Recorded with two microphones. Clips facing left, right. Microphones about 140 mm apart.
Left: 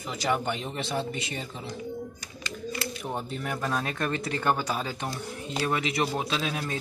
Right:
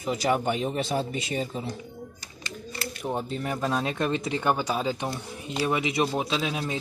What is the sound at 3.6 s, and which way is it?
Speech, 20° right (ahead or behind).